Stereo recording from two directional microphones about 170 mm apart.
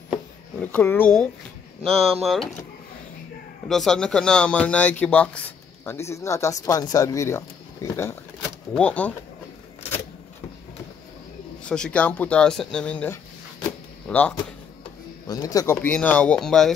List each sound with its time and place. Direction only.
0.6 s speech: 10° left (ahead or behind)
3.6 s speech: centre (ahead or behind)
11.7 s speech: 5° left (ahead or behind)
15.2 s speech: 20° left (ahead or behind); by 16.7 s centre (ahead or behind)